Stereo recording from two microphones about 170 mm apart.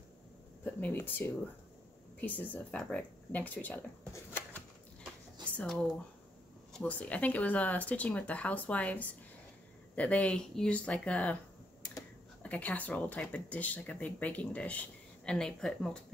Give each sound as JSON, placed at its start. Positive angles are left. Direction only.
{"t": 0.7, "sound": "speech", "side_deg": 10}
{"t": 5.4, "sound": "a sound", "side_deg": 5}
{"t": 6.7, "sound": "speech", "side_deg": 5}
{"t": 12.4, "sound": "speech", "side_deg": 10}